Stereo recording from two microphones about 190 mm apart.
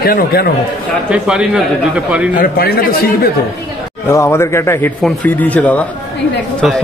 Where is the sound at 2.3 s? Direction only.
50° left (ahead or behind).